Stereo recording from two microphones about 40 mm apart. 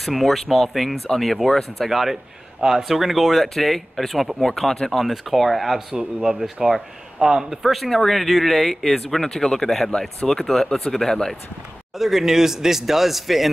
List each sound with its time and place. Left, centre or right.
0.0 s speech: centre
4.9 s speech: centre
6.3 s speech: centre
12.0 s speech: centre